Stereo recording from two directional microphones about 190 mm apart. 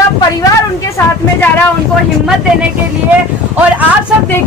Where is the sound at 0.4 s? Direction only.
15° left (ahead or behind).